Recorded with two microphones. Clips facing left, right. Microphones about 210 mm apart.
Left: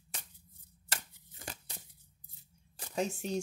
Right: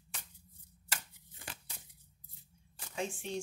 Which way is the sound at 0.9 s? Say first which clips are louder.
Left 2 dB; 40° left (ahead or behind).